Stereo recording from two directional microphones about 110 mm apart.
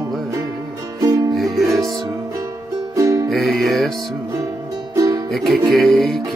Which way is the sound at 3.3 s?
Centre (ahead or behind).